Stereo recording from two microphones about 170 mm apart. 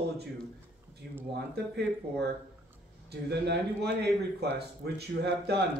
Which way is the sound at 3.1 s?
75° right (ahead or behind).